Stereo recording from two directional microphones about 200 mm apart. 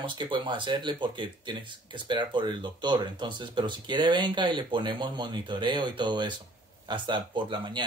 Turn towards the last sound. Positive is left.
turn(degrees=-25)  # may be behind; listen again after turning